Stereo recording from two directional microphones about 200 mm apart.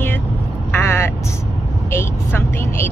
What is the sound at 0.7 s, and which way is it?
Vehicle, 10° left (ahead or behind).